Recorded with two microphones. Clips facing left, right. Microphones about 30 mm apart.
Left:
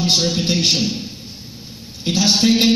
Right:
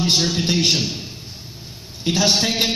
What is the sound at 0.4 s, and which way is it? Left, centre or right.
Speech, left.